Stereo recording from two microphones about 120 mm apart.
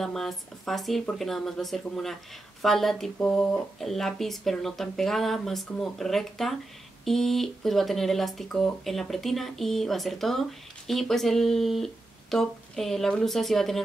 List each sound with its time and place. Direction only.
0.0 s speech: 5° left (ahead or behind)